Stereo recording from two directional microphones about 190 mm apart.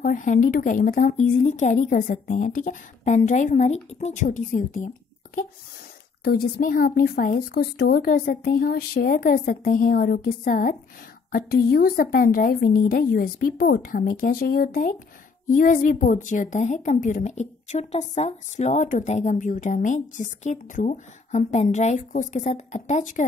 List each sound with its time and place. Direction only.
0.0 s a woman's voice: 45° left (ahead or behind)